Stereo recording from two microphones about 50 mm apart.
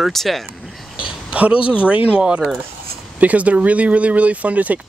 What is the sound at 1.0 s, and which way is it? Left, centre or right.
Speech, right.